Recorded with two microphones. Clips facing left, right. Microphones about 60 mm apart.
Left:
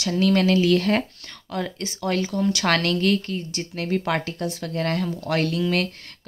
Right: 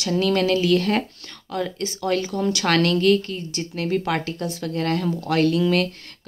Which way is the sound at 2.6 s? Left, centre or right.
Left.